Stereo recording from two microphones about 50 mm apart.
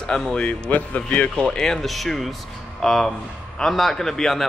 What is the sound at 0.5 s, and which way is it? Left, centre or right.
Speech, left.